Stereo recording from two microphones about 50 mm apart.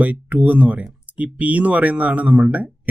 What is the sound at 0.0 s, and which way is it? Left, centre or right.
Speech, right.